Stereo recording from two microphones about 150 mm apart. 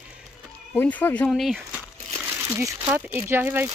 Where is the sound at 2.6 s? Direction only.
20° right (ahead or behind).